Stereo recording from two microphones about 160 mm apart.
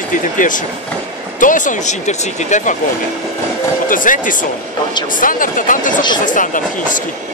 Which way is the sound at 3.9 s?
55° left (ahead or behind).